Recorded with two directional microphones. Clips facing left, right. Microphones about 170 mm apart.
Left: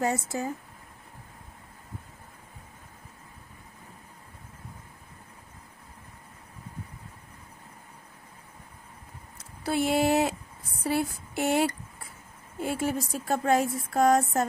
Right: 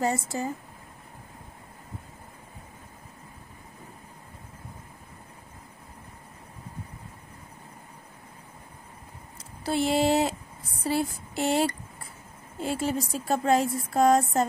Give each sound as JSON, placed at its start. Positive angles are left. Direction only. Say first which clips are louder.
{"t": 0.0, "sound": "speech", "louder": "right 1 dB", "side_deg": 5}
{"t": 9.8, "sound": "a sound", "louder": "right 1 dB", "side_deg": 5}
{"t": 12.5, "sound": "speech", "louder": "right 1 dB", "side_deg": 10}